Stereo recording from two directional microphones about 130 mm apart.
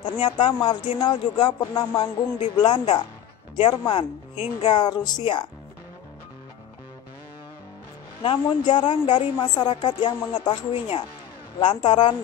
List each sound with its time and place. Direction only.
0.0 s a woman's voice: 40° left (ahead or behind)
4.7 s a woman's voice: 35° left (ahead or behind)
8.2 s a woman's voice: 40° left (ahead or behind)